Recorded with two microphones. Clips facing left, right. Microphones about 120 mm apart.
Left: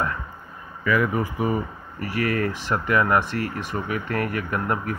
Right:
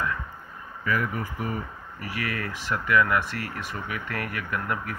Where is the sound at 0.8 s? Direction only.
90° left.